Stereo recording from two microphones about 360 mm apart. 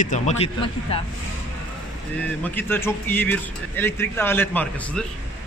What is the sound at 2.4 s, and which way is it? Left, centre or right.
Speech, centre.